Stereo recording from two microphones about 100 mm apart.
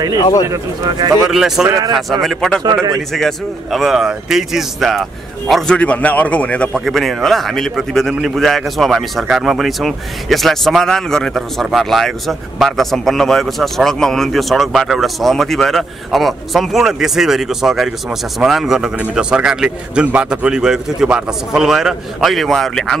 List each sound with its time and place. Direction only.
0.2 s speech: 40° left (ahead or behind)
0.5 s speech: 40° right (ahead or behind)
1.2 s a man's voice: 5° right (ahead or behind)
1.7 s speech: 40° right (ahead or behind)
2.2 s a man's voice: 5° left (ahead or behind)
5.5 s a man's voice: 10° left (ahead or behind)
6.8 s a man's voice: centre (ahead or behind)